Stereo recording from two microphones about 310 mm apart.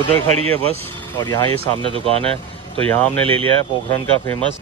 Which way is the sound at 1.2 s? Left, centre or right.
Centre.